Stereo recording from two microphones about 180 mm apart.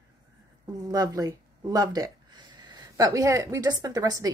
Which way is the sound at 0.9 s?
20° right (ahead or behind).